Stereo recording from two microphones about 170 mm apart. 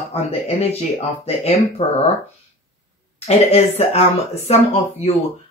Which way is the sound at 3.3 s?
40° left (ahead or behind).